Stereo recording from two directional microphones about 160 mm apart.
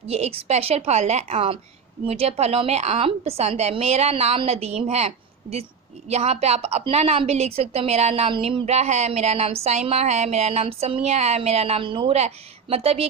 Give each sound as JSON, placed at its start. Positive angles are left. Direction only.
{"t": 0.1, "sound": "a woman's voice", "side_deg": -40}